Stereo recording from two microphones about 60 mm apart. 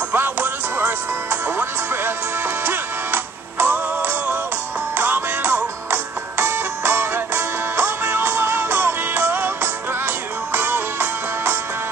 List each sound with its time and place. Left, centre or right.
0.1 s music: right
4.9 s music: right
10.5 s music: right